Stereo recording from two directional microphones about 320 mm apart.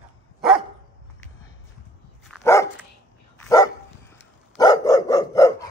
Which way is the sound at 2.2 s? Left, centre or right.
Centre.